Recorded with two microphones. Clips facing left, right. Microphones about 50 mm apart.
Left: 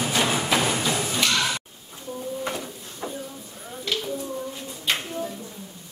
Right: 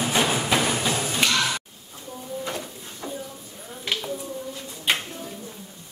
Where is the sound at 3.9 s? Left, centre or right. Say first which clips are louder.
Left 1 dB; centre.